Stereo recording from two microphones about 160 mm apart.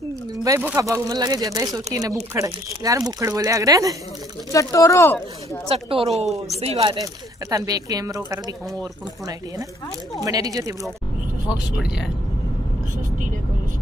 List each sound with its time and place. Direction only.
0.4 s speech: 20° right (ahead or behind)
4.5 s speech: 20° left (ahead or behind)
5.7 s speech: 35° right (ahead or behind)
6.2 s a woman's voice: centre (ahead or behind)
6.6 s speech: 35° right (ahead or behind)
10.2 s speech: 20° right (ahead or behind)